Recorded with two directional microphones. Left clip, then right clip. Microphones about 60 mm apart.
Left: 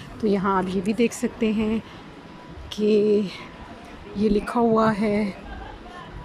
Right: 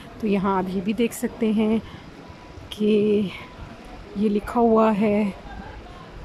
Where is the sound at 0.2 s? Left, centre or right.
Right.